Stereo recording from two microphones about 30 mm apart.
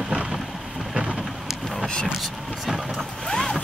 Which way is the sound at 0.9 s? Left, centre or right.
Right.